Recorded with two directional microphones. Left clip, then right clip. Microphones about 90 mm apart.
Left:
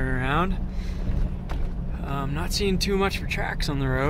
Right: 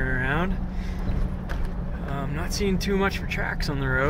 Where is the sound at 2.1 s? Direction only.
55° left (ahead or behind); by 4.1 s 70° left (ahead or behind).